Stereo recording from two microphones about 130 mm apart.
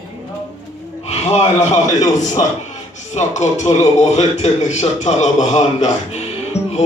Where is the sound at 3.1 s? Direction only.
60° left (ahead or behind).